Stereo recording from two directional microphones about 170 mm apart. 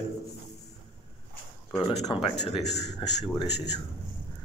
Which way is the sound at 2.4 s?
40° left (ahead or behind).